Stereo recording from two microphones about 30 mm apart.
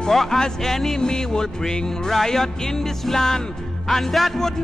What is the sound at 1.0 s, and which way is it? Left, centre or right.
Music, left.